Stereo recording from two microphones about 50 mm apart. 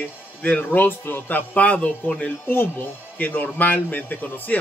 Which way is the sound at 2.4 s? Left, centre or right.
Left.